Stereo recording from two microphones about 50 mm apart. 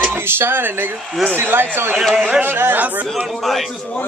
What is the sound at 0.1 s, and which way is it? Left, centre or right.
Music, right.